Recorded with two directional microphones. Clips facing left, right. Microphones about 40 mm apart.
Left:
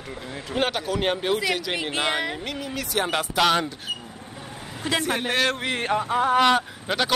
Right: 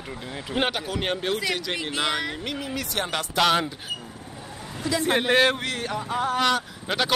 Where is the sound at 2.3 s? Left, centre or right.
Centre.